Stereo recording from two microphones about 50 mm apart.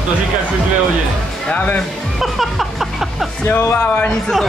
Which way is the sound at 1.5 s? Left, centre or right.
Left.